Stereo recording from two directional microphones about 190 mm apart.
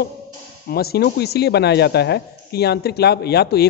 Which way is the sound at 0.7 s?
55° left (ahead or behind).